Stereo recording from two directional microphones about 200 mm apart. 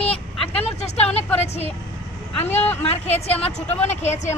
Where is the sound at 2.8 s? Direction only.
30° left (ahead or behind).